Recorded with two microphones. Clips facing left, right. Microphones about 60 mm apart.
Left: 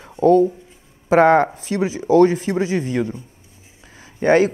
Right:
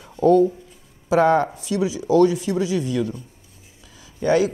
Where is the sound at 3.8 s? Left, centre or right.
Left.